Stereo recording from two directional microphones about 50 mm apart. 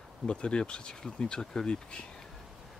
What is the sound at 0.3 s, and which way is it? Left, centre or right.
Speech, centre.